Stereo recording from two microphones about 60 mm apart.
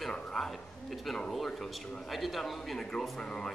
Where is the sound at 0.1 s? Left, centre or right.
Centre.